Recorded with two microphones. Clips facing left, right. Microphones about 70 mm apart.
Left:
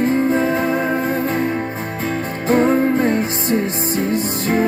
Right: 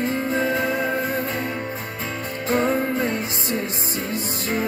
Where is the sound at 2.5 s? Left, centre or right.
Left.